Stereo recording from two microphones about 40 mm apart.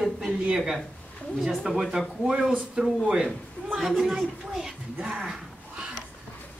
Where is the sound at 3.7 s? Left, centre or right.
Centre.